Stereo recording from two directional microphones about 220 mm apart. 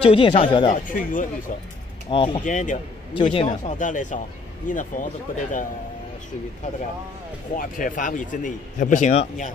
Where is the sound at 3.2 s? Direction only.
25° left (ahead or behind).